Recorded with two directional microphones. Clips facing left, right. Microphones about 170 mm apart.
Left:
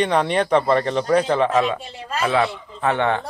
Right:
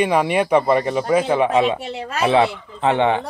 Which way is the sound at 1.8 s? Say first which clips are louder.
Right 4 dB; 75° right (ahead or behind).